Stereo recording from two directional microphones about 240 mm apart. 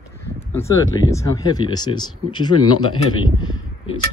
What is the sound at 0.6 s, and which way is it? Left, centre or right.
Speech, centre.